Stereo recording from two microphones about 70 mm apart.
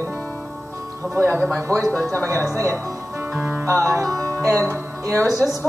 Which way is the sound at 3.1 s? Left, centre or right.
Right.